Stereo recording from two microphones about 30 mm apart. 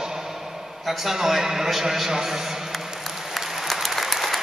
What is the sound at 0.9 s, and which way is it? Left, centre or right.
A man's voice, centre.